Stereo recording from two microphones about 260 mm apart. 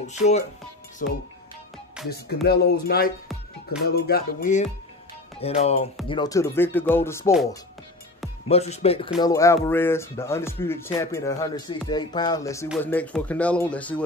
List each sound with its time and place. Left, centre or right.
0.0 s speech: left
1.0 s music: left
5.4 s speech: left
8.5 s speech: left
9.2 s speech: centre
12.6 s speech: centre